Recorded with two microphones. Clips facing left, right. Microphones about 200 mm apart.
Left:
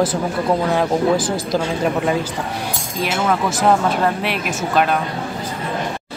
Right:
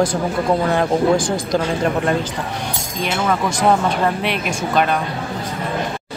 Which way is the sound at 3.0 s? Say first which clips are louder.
Left 1 dB; 5° left (ahead or behind).